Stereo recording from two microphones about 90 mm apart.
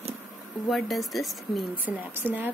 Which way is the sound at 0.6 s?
Centre (ahead or behind).